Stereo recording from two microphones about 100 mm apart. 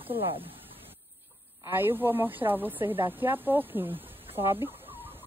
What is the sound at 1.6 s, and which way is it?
A woman's voice, 20° right (ahead or behind).